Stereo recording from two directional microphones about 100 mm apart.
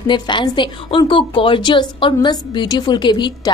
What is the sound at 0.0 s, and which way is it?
A woman's voice, 50° left (ahead or behind).